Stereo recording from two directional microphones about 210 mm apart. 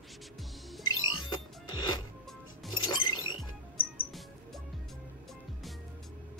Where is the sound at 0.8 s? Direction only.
75° left (ahead or behind).